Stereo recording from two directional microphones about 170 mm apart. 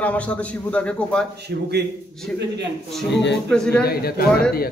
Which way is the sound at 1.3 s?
75° right (ahead or behind).